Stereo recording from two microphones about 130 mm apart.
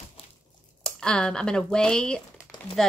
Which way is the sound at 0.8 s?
5° left (ahead or behind).